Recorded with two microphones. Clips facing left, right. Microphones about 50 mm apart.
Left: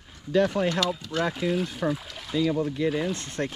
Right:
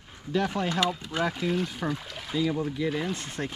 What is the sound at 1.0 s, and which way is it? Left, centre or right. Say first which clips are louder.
Speech: left 1 dB; centre.